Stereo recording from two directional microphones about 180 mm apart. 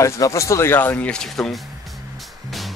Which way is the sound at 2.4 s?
Centre (ahead or behind).